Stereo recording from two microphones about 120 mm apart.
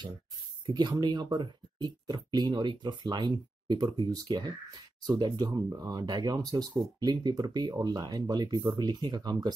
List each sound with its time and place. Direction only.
0.7 s speech: 35° right (ahead or behind)